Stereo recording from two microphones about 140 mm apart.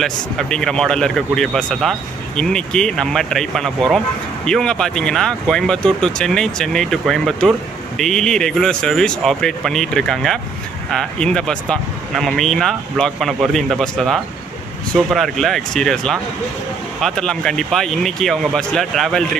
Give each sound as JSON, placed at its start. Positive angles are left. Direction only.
{"t": 0.0, "sound": "speech", "side_deg": 5}